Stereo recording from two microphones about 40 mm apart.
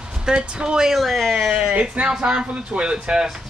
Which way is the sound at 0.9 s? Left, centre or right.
Centre.